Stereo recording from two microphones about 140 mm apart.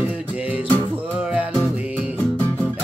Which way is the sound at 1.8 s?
10° right (ahead or behind).